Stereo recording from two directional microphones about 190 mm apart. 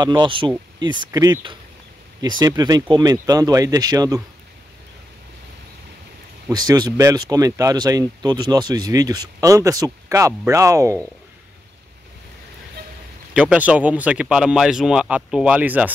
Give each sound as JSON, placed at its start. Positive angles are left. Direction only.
{"t": 0.0, "sound": "speech", "side_deg": -20}
{"t": 6.5, "sound": "speech", "side_deg": -20}
{"t": 13.3, "sound": "speech", "side_deg": -5}